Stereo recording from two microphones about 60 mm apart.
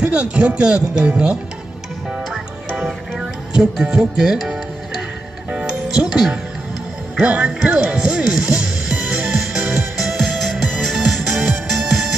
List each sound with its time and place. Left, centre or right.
0.0 s speech: centre
2.0 s music: centre
7.2 s speech: centre
9.6 s music: right
10.0 s music: centre